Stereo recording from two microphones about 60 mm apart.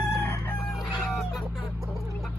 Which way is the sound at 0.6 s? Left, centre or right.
Centre.